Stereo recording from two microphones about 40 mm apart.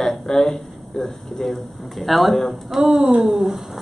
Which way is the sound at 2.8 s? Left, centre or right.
Centre.